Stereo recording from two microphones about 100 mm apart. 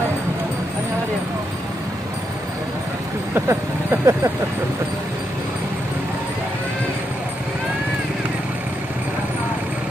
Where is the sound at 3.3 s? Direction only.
25° right (ahead or behind).